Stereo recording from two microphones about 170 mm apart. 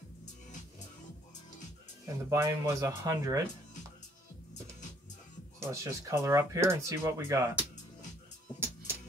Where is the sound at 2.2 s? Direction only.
15° right (ahead or behind).